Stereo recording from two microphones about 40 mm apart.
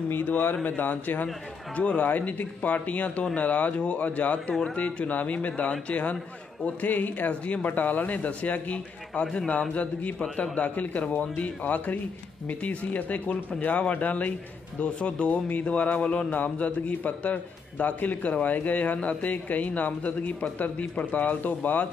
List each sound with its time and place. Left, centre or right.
0.3 s a man's voice: left
7.6 s a man's voice: left